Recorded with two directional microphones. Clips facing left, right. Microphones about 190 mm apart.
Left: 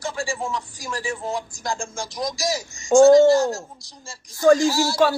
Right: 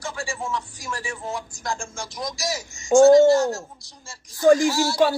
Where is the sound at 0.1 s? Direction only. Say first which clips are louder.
Left 4 dB; 30° left (ahead or behind).